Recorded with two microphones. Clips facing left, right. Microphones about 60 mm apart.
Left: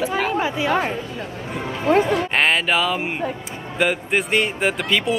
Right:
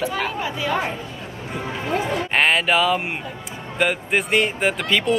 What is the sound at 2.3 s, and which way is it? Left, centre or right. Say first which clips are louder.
A man's voice: right 3 dB; centre.